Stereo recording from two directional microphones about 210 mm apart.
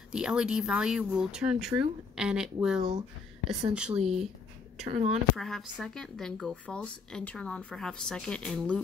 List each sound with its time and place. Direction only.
0.1 s speech: 5° right (ahead or behind)
2.8 s speech: 20° right (ahead or behind)
3.7 s speech: 5° right (ahead or behind)
4.8 s speech: 30° right (ahead or behind)
5.3 s speech: centre (ahead or behind)